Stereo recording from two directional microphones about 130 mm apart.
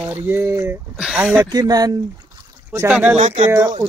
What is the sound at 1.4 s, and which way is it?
Speech, 30° right (ahead or behind).